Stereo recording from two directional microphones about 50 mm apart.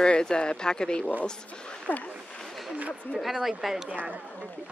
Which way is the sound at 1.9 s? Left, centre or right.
Left.